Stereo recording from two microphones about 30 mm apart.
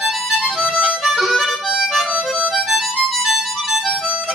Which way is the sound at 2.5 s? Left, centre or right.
Centre.